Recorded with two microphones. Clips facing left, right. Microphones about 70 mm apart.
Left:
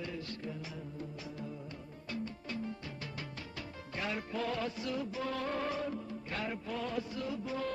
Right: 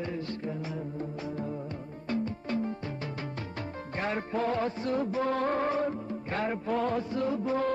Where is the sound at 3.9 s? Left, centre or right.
Right.